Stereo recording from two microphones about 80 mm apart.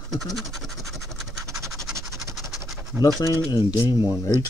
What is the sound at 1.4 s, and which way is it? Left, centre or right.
Scratch, right.